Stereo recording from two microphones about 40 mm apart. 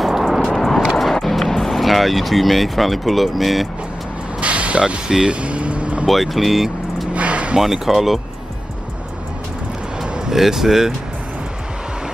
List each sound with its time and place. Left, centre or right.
0.0 s vehicle: centre
0.5 s a sound: centre
1.2 s music: centre
1.6 s speech: centre
4.4 s vehicle: right
6.0 s speech: centre
7.2 s a sound: right
7.5 s speech: centre
10.3 s speech: centre